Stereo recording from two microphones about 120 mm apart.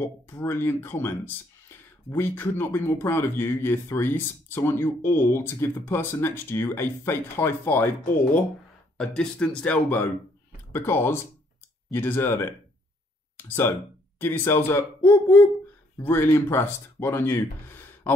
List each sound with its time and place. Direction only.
0.0 s speech: 20° left (ahead or behind)